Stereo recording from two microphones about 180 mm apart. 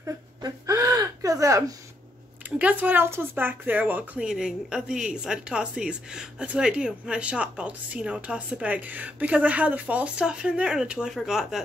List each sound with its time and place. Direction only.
0.0 s whimper: 20° right (ahead or behind)
2.6 s speech: 10° right (ahead or behind)